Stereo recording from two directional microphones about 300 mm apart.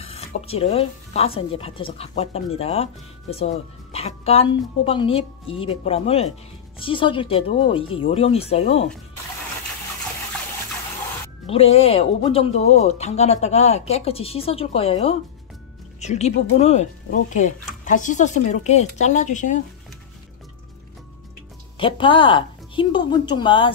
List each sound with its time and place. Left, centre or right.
0.0 s speech: centre
11.4 s speech: centre
21.7 s a woman's voice: centre